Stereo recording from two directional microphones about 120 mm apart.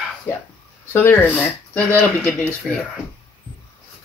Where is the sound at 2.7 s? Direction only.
Centre (ahead or behind).